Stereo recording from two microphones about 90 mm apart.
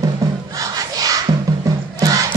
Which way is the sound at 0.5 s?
40° right (ahead or behind).